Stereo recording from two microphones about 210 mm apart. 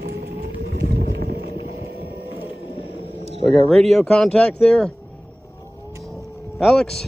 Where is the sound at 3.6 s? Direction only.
Centre (ahead or behind).